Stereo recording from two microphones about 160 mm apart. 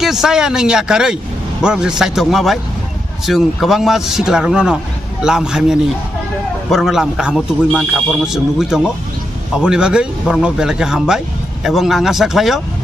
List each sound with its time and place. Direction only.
0.0 s speech: centre (ahead or behind)